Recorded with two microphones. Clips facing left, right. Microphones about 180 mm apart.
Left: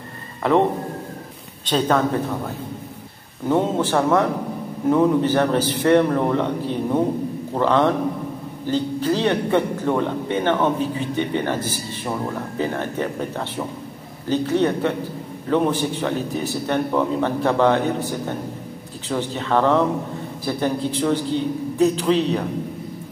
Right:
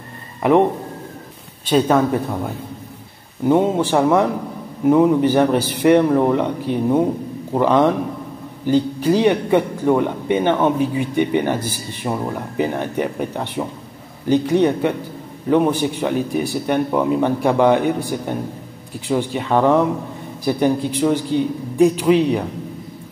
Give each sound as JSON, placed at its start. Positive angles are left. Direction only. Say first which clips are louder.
{"t": 0.4, "sound": "speech", "louder": "right 3 dB", "side_deg": -15}
{"t": 1.7, "sound": "a man's voice", "louder": "right 4 dB", "side_deg": -10}
{"t": 3.4, "sound": "a man's voice", "louder": "right 4 dB", "side_deg": -15}